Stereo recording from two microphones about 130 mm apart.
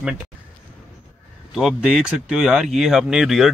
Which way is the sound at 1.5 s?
Centre (ahead or behind).